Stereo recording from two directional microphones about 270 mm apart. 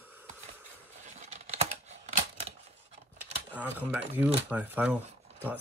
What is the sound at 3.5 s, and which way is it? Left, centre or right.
Speech, centre.